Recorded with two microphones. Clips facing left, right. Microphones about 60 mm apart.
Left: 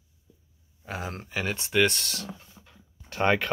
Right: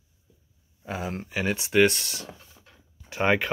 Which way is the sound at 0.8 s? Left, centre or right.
Centre.